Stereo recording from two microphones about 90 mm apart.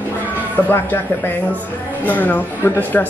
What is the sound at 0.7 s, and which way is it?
A woman's voice, 25° left (ahead or behind).